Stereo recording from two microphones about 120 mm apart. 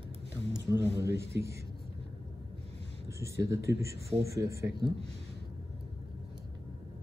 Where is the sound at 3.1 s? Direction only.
25° right (ahead or behind).